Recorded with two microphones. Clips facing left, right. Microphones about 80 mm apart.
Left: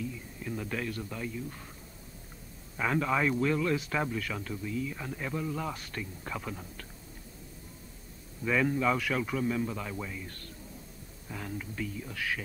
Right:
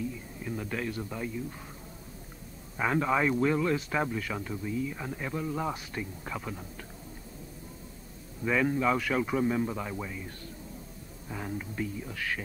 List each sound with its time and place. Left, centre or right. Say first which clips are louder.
0.4 s a man's voice: right 1 dB; centre
2.8 s speech: right 2 dB; centre
3.7 s speech: right 1 dB; centre
8.5 s speech: right 1 dB; centre
9.3 s speech: right 3 dB; right
12.1 s speech: even; centre